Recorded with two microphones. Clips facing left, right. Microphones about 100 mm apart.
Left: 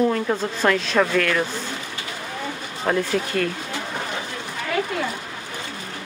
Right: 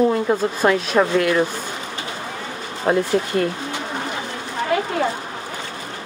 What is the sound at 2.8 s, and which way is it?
Speech, 20° right (ahead or behind).